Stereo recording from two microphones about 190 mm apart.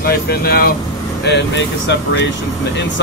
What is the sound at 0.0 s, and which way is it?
Speech, 55° left (ahead or behind).